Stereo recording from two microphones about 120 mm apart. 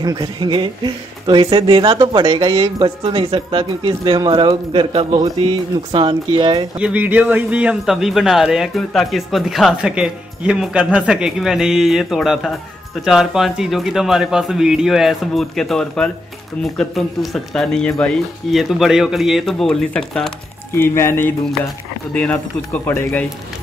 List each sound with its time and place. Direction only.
0.0 s speech: 35° right (ahead or behind)
6.8 s speech: 10° right (ahead or behind); by 20.2 s 5° left (ahead or behind)
20.7 s speech: 20° left (ahead or behind)